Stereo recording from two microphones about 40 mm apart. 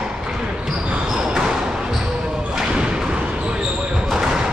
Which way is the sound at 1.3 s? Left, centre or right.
Centre.